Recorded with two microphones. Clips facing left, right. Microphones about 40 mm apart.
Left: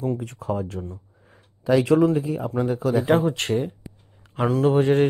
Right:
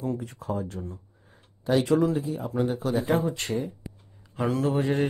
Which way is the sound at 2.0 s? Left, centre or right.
Left.